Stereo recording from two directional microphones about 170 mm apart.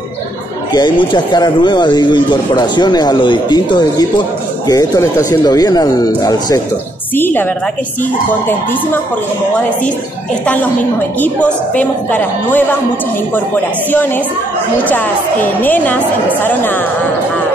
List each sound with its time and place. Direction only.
0.7 s speech: 25° left (ahead or behind)
7.2 s a woman's voice: 10° left (ahead or behind)
10.4 s a woman's voice: 10° left (ahead or behind)
14.9 s a woman's voice: 10° left (ahead or behind)